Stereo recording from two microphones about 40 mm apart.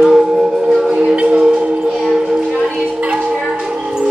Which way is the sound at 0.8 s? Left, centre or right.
Right.